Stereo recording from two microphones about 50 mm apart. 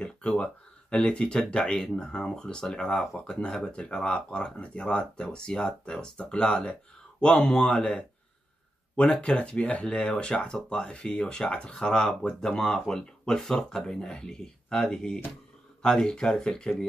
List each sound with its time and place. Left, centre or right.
0.0 s speech: centre